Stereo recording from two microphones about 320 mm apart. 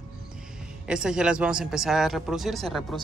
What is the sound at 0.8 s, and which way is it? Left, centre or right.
A man's voice, centre.